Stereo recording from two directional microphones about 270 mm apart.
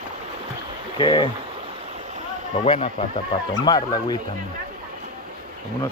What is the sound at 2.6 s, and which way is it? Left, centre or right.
Speech, left.